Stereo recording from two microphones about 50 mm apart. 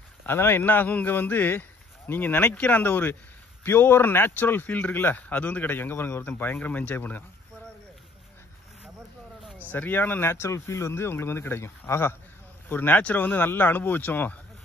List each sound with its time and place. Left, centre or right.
0.3 s speech: left
5.3 s speech: left
9.7 s speech: left
10.5 s speech: left
12.6 s speech: left
12.9 s speech: left